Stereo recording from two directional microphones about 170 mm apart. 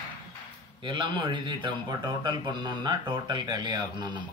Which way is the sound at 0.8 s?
30° right (ahead or behind).